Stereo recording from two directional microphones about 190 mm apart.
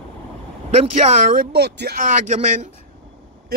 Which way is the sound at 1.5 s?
60° right (ahead or behind).